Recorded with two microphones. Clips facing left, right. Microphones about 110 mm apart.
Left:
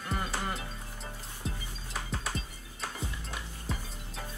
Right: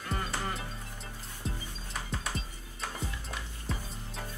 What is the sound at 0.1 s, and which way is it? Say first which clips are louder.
Music: left 1 dB; centre (ahead or behind).